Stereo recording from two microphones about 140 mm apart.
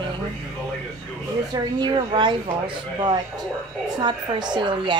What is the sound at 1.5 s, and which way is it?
Speech, 30° right (ahead or behind).